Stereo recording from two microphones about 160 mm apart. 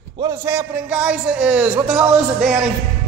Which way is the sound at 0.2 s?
15° right (ahead or behind).